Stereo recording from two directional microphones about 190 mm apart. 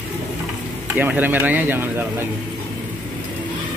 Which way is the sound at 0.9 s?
10° right (ahead or behind).